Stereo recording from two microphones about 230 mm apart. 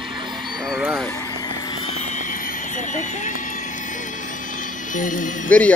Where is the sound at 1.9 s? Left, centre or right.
Left.